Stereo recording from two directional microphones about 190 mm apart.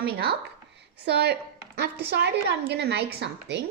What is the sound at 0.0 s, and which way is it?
A woman's voice, 55° right (ahead or behind).